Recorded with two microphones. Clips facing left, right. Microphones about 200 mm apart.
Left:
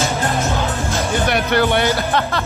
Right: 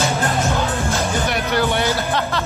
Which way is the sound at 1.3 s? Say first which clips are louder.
Left 5 dB; 60° left (ahead or behind).